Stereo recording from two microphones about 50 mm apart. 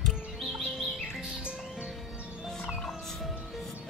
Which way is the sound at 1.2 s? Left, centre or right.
Right.